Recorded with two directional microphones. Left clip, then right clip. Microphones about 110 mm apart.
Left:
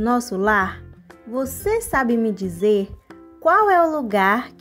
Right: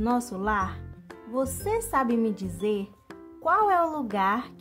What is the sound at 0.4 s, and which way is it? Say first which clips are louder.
Speech: left 9 dB; 30° left (ahead or behind).